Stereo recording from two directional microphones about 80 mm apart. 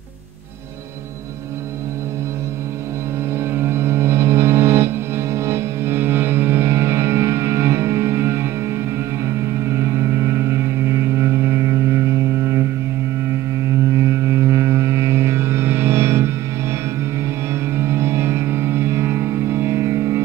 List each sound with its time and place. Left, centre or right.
3.3 s music: right
13.3 s a sound: right
17.7 s music: right